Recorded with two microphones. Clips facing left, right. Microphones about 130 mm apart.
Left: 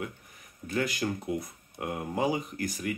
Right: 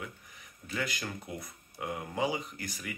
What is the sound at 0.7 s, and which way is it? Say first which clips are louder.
Speech: left 7 dB; 40° left (ahead or behind).